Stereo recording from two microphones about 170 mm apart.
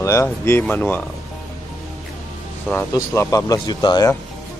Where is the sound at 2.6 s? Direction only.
15° left (ahead or behind).